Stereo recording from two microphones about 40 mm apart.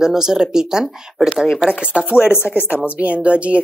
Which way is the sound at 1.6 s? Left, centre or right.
Right.